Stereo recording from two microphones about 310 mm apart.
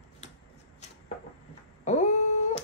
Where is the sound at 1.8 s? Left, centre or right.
Left.